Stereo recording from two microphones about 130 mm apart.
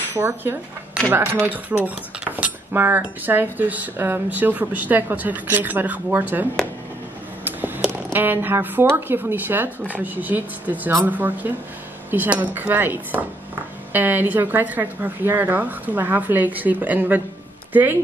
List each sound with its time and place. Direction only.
0.1 s speech: 15° right (ahead or behind)
7.4 s speech: 15° right (ahead or behind)